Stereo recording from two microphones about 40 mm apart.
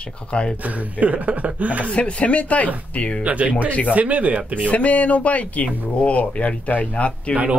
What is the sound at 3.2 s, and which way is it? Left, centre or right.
Speech, right.